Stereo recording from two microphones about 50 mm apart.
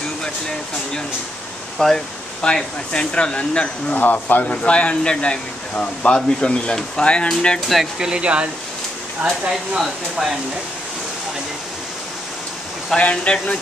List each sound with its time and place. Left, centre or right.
1.8 s speech: centre
4.0 s speech: left; by 7.6 s centre
7.6 s speech: centre
8.0 s speech: centre
9.5 s speech: centre
12.9 s speech: left